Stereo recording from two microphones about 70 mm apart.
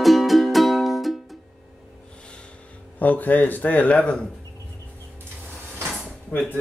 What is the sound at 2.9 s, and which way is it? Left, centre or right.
Speech, left.